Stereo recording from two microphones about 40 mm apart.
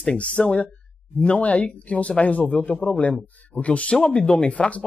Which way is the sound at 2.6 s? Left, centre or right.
Left.